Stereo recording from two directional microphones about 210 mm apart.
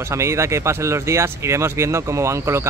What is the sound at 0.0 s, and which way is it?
Speech, 15° right (ahead or behind).